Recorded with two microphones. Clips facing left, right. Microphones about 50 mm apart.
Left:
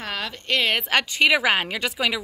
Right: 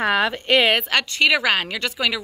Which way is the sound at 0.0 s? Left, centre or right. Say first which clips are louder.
Right 11 dB; right.